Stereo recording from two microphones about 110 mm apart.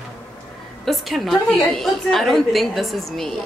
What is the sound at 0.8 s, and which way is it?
A woman's voice, centre (ahead or behind).